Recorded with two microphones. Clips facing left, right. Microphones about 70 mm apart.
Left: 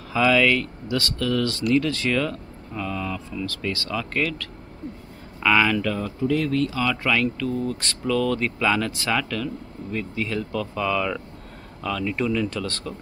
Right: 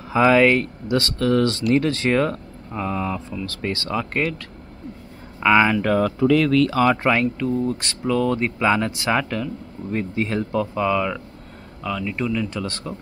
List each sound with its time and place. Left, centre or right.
0.1 s speech: right
5.9 s speech: right
6.7 s speech: right; by 11.1 s centre
11.8 s speech: centre